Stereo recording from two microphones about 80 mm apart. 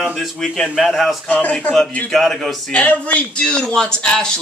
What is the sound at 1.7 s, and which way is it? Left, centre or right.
Speech, centre.